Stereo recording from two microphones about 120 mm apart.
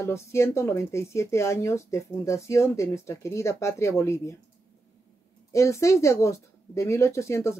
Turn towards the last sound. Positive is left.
turn(degrees=25)  # may be behind; listen again after turning